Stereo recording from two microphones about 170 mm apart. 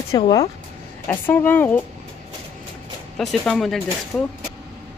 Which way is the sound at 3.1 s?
Centre (ahead or behind).